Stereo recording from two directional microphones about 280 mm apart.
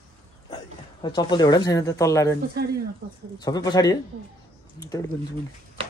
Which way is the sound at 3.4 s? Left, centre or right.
Centre.